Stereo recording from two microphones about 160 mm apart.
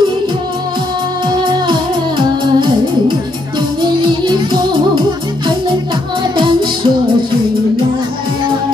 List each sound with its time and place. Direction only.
1.4 s music: 30° right (ahead or behind)
6.3 s music: 30° right (ahead or behind)